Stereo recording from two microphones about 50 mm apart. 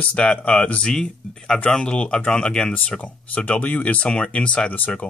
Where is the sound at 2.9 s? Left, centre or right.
Left.